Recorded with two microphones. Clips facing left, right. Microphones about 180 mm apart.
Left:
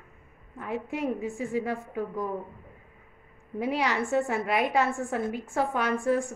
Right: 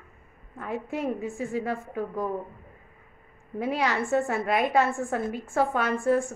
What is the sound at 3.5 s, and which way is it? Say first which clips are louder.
A woman's voice: right 1 dB; 15° left (ahead or behind).